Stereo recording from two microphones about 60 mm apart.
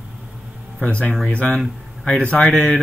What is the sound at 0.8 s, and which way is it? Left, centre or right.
Speech, centre.